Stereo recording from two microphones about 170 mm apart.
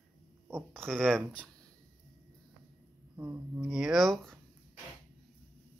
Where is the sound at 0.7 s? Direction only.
5° left (ahead or behind).